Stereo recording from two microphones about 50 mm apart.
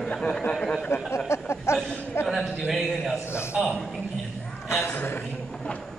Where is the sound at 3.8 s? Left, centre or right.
Centre.